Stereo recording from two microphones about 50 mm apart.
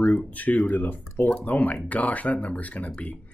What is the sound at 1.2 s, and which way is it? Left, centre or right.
Speech, left.